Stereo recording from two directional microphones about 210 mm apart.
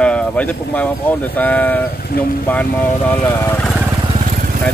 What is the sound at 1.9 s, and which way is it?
Speech, 45° left (ahead or behind).